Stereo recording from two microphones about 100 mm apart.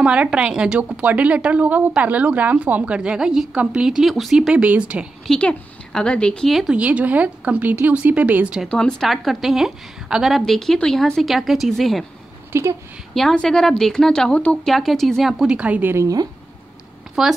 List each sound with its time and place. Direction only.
0.0 s a woman's voice: 10° right (ahead or behind)
5.2 s speech: 10° left (ahead or behind)
6.8 s a woman's voice: 15° right (ahead or behind)
8.6 s a woman's voice: 10° left (ahead or behind)
12.5 s speech: 25° right (ahead or behind)
13.1 s a woman's voice: 5° left (ahead or behind)
14.7 s a woman's voice: centre (ahead or behind); by 16.1 s 20° right (ahead or behind)
17.2 s a woman's voice: 5° right (ahead or behind)